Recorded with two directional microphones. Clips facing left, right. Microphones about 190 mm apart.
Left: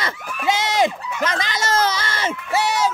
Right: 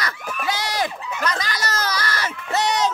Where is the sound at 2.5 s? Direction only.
5° left (ahead or behind).